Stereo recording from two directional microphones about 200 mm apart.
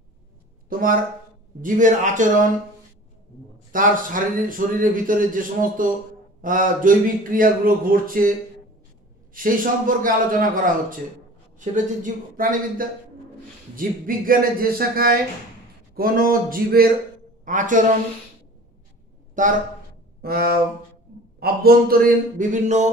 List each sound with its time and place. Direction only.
0.7 s a man's voice: 45° right (ahead or behind)
3.7 s a man's voice: 45° right (ahead or behind)
19.4 s a man's voice: 40° right (ahead or behind)
20.2 s a sound: 50° right (ahead or behind)
21.4 s a man's voice: 50° right (ahead or behind)